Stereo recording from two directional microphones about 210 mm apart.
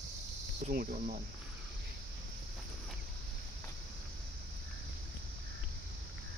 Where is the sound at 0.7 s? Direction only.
45° right (ahead or behind).